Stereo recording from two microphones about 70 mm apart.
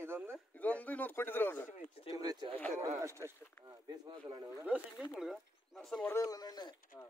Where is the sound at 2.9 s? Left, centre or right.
Right.